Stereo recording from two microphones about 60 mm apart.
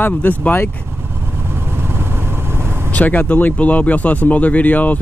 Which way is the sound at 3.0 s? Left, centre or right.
Left.